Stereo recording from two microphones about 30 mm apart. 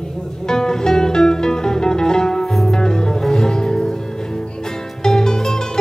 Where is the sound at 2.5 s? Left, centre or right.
Centre.